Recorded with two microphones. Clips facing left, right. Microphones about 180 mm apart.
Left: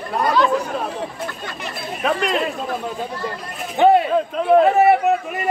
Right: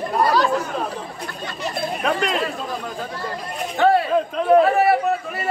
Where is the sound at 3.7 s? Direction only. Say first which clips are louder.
Left 3 dB; 20° left (ahead or behind).